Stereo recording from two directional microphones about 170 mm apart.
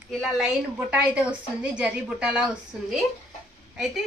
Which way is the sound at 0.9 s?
5° right (ahead or behind).